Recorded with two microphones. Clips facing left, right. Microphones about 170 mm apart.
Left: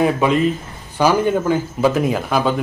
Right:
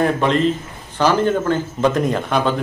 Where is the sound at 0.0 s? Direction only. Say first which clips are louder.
Left 1 dB; 5° left (ahead or behind).